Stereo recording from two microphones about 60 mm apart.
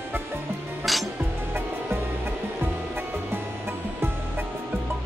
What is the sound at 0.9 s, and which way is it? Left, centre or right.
Music, centre.